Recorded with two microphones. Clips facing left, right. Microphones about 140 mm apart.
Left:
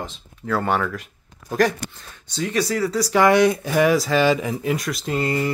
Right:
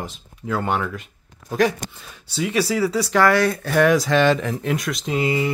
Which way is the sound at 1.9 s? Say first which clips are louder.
Right 1 dB; 5° right (ahead or behind).